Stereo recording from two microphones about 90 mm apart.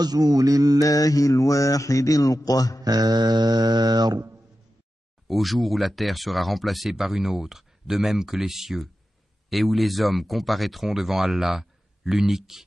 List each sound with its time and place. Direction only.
0.0 s music: 45° right (ahead or behind)
0.7 s mantra: 40° left (ahead or behind)
2.8 s music: 50° right (ahead or behind)
5.3 s speech: centre (ahead or behind)